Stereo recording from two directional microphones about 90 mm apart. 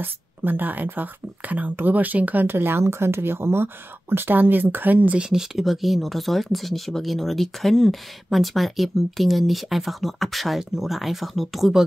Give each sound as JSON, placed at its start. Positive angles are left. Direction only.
{"t": 0.0, "sound": "speech", "side_deg": -20}
{"t": 5.3, "sound": "speech", "side_deg": 0}